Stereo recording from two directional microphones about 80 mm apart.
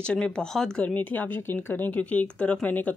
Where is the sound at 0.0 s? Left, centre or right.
Centre.